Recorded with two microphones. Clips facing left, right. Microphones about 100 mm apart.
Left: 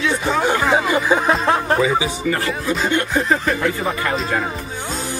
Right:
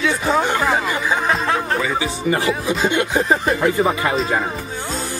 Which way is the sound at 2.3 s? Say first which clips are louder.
Right 2 dB; 15° right (ahead or behind).